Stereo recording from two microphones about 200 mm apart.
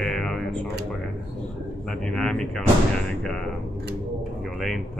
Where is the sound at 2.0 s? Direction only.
5° left (ahead or behind).